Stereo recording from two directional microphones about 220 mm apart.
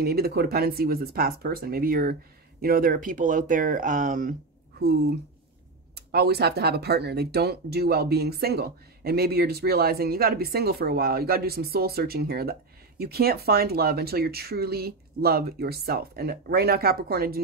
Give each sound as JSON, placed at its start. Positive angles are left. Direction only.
{"t": 0.0, "sound": "speech", "side_deg": -45}